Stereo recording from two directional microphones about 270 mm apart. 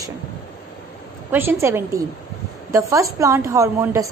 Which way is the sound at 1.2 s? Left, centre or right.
Centre.